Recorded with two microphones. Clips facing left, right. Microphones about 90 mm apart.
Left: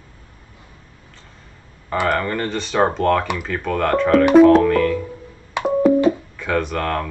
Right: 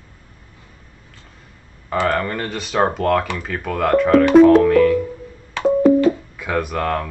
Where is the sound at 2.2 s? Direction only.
Centre (ahead or behind).